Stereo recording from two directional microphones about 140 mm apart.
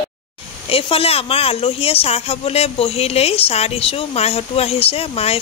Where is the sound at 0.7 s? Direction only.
40° left (ahead or behind).